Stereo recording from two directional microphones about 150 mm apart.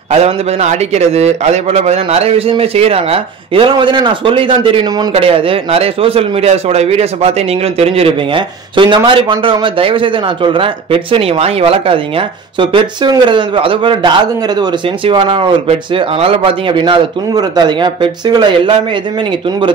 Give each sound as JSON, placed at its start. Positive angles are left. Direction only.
{"t": 0.1, "sound": "speech", "side_deg": -45}